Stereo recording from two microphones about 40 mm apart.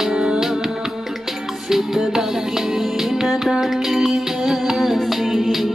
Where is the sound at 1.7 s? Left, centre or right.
Centre.